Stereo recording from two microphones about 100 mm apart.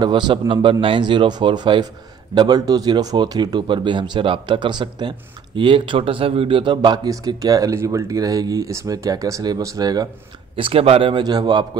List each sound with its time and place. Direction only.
0.0 s speech: 50° right (ahead or behind)
10.5 s speech: 70° right (ahead or behind)
11.2 s speech: 45° right (ahead or behind)